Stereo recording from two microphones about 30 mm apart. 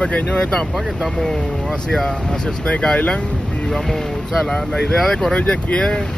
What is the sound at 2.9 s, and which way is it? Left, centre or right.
Speech, left.